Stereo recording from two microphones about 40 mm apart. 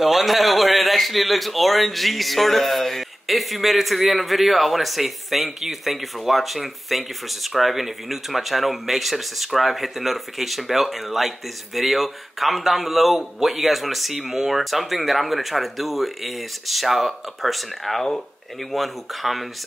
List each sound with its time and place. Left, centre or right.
0.0 s a man's voice: centre